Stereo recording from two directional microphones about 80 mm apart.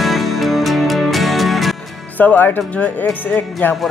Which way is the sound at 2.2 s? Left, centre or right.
Left.